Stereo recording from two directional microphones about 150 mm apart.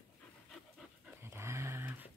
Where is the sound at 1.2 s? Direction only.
15° right (ahead or behind).